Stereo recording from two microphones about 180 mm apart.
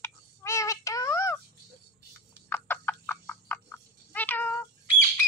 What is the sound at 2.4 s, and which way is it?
Fowl, 10° left (ahead or behind).